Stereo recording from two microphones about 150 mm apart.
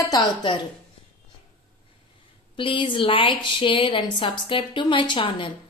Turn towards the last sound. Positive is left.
turn(degrees=35)  # may be behind; listen again after turning